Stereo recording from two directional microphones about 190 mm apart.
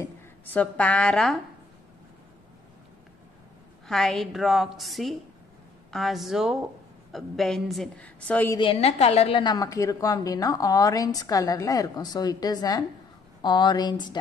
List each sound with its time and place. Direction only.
0.0 s a woman's voice: 10° left (ahead or behind)
3.8 s a woman's voice: centre (ahead or behind)
8.5 s a woman's voice: 30° left (ahead or behind)